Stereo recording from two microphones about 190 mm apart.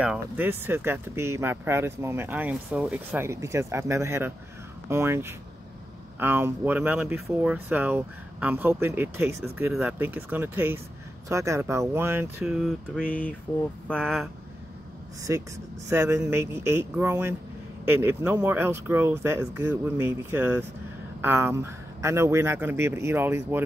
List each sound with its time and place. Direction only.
0.0 s speech: 5° right (ahead or behind)
15.3 s speech: 15° right (ahead or behind)